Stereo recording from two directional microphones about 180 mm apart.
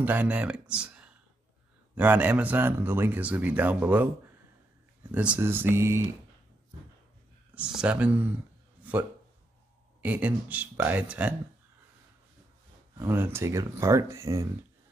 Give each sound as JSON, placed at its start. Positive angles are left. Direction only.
{"t": 0.0, "sound": "speech", "side_deg": -10}
{"t": 5.1, "sound": "speech", "side_deg": -10}
{"t": 7.5, "sound": "speech", "side_deg": -5}
{"t": 10.0, "sound": "speech", "side_deg": -10}
{"t": 13.0, "sound": "speech", "side_deg": -15}